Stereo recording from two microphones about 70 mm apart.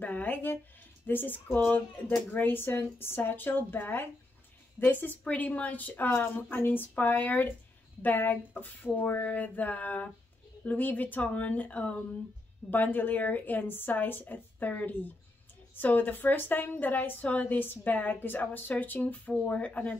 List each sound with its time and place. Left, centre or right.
0.0 s a woman's voice: left